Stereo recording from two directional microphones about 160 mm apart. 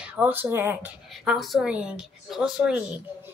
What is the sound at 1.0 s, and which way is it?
A woman's voice, centre (ahead or behind).